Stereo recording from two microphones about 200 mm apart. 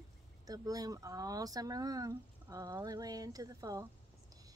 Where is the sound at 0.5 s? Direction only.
20° right (ahead or behind).